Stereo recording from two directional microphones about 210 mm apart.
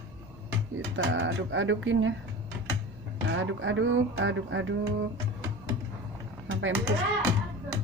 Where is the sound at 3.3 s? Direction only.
65° right (ahead or behind).